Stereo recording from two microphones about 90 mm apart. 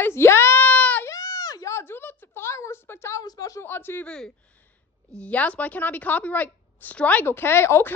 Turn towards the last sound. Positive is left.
turn(degrees=25)  # may be behind; listen again after turning